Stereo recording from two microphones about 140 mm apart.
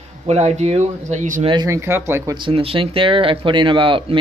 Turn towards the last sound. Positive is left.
turn(degrees=-40)  # may be behind; listen again after turning